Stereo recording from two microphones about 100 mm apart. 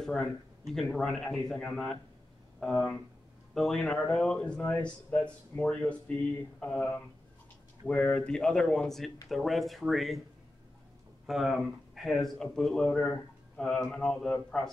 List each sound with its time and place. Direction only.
0.0 s a man's voice: 5° left (ahead or behind)
3.5 s a man's voice: 5° left (ahead or behind)
11.2 s speech: 5° right (ahead or behind)